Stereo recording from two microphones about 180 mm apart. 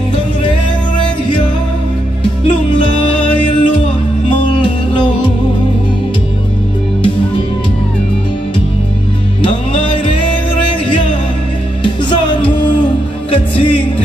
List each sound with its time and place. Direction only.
2.4 s music: 30° left (ahead or behind)
9.4 s music: 30° left (ahead or behind)
11.8 s music: 25° left (ahead or behind)